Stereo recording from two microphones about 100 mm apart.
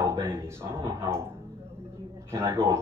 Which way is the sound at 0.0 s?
25° right (ahead or behind).